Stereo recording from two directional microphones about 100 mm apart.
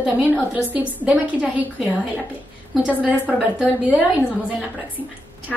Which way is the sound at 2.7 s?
15° right (ahead or behind).